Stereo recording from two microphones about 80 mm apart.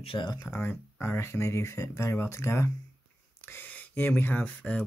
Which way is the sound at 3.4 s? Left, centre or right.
Left.